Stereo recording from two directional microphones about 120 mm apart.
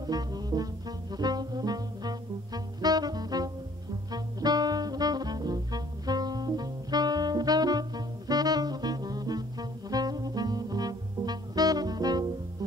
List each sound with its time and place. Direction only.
0.0 s brass instrument: 35° right (ahead or behind)
4.1 s music: 35° right (ahead or behind)